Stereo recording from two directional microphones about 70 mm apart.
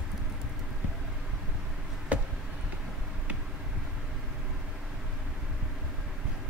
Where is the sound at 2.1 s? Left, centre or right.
Centre.